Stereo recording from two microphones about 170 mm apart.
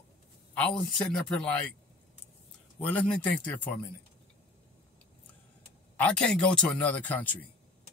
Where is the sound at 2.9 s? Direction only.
10° left (ahead or behind).